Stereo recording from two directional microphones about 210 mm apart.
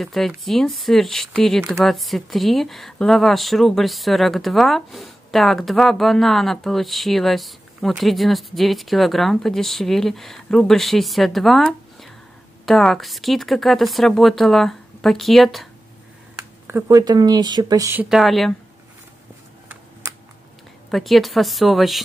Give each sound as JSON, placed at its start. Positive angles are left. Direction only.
{"t": 0.0, "sound": "speech", "side_deg": 0}
{"t": 16.6, "sound": "speech", "side_deg": -15}
{"t": 20.9, "sound": "speech", "side_deg": 0}